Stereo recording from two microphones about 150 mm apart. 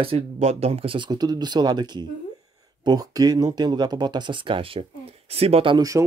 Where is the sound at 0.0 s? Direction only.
40° right (ahead or behind).